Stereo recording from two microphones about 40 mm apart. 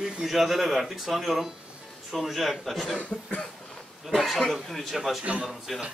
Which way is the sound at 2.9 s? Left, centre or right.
Left.